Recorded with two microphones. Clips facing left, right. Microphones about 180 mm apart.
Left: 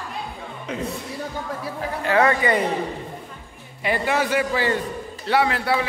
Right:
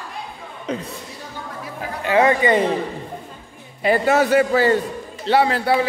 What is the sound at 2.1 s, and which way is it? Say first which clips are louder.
Speech: right 3 dB; 20° right (ahead or behind).